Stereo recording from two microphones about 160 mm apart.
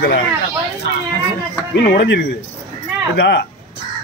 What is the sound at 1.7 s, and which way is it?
Speech, 85° left.